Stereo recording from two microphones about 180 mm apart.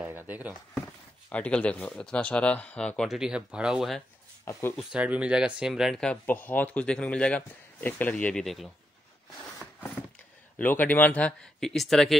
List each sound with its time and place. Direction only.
0.0 s speech: 10° right (ahead or behind)
1.3 s speech: 5° left (ahead or behind)
4.5 s speech: 15° left (ahead or behind)
4.7 s speech: 5° right (ahead or behind)
10.6 s speech: 10° left (ahead or behind)